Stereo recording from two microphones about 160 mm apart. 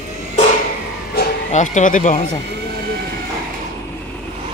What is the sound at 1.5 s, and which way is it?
Speech, 50° left (ahead or behind).